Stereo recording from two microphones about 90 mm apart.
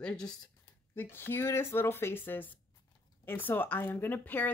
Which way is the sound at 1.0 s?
25° left (ahead or behind).